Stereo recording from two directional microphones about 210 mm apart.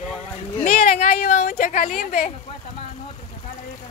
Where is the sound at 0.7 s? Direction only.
35° left (ahead or behind).